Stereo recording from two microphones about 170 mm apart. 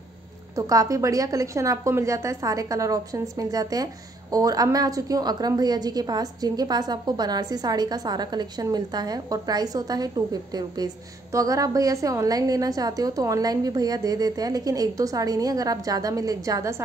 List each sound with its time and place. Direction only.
0.6 s a woman's voice: 20° right (ahead or behind)